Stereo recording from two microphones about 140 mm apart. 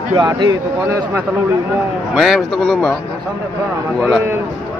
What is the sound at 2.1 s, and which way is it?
Speech, centre (ahead or behind).